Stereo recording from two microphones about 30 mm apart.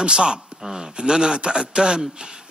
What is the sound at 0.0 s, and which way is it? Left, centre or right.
Speech, right.